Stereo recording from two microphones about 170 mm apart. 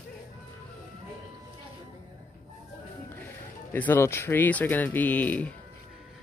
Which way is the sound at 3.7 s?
10° left (ahead or behind).